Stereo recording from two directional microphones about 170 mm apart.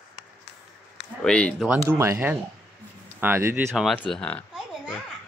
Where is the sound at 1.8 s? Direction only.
15° right (ahead or behind).